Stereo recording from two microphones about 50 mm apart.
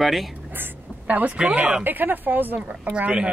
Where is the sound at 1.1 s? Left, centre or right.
Right.